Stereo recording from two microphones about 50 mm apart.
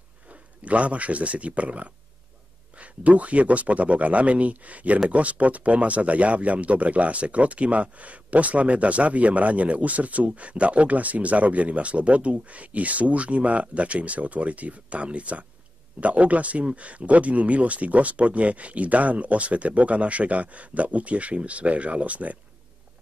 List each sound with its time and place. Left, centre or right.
0.3 s speech: right